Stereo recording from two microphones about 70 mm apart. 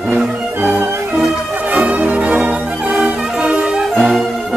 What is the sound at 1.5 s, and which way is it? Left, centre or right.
Music, right.